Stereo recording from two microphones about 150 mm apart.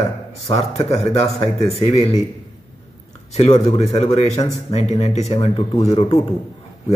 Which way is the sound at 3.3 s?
40° left (ahead or behind).